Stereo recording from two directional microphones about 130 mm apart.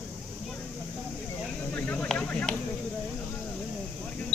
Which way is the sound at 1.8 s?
10° left (ahead or behind).